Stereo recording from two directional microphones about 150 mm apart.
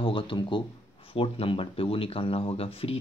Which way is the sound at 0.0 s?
35° left (ahead or behind).